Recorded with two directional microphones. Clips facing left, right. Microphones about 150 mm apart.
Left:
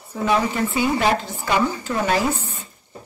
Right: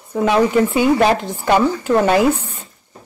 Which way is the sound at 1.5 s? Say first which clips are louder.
Right 7 dB; 60° right (ahead or behind).